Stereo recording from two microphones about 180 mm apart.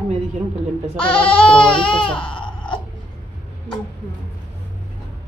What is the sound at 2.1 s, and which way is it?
Baby cry, 5° left (ahead or behind).